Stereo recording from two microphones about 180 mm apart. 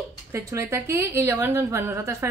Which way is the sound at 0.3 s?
15° right (ahead or behind).